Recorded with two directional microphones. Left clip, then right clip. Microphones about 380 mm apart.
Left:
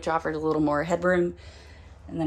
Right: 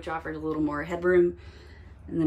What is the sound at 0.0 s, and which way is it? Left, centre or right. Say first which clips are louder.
Speech: left 6 dB; centre.